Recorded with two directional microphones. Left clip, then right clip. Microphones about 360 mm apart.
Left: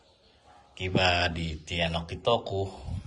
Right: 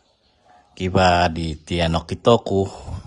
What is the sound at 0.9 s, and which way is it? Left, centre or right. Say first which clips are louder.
Speech: right 9 dB; centre.